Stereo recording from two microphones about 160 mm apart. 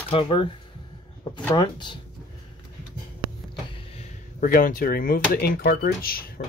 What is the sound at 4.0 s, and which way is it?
Speech, 60° left (ahead or behind).